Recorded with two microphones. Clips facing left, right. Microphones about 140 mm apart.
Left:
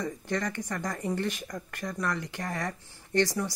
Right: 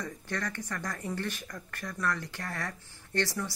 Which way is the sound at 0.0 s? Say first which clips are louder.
Left 5 dB; 15° left (ahead or behind).